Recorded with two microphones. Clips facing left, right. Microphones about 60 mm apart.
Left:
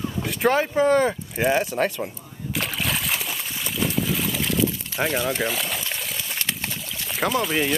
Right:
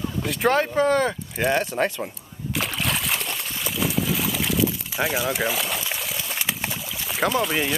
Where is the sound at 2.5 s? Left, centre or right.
Centre.